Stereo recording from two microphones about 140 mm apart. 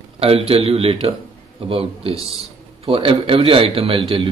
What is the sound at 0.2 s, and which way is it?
A man's voice, 45° right (ahead or behind).